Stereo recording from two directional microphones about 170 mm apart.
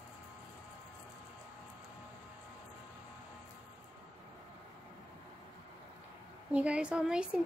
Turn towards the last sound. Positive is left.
turn(degrees=-5)  # may be behind; listen again after turning